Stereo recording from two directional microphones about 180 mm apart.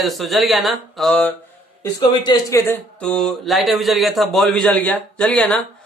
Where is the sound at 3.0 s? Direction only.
5° left (ahead or behind).